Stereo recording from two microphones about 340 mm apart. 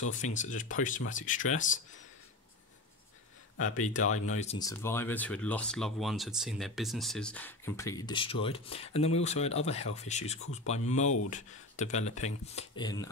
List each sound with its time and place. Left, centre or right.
0.1 s speech: left
4.0 s speech: left
4.4 s speech: centre